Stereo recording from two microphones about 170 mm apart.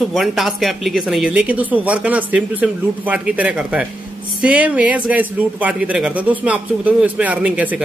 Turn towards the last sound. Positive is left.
turn(degrees=-5)  # may be behind; listen again after turning